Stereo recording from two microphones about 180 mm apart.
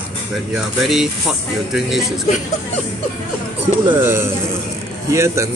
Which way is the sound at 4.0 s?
15° right (ahead or behind).